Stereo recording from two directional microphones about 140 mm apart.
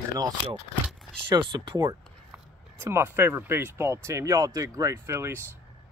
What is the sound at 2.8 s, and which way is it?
Speech, 15° right (ahead or behind).